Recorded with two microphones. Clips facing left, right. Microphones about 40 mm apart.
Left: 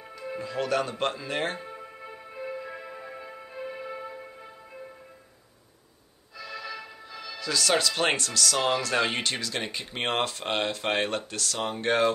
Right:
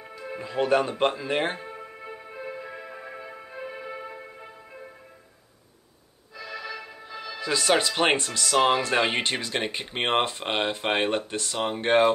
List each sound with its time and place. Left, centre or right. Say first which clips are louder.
0.1 s speech: even; centre
1.7 s music: right 2 dB; centre
6.3 s speech: right 2 dB; centre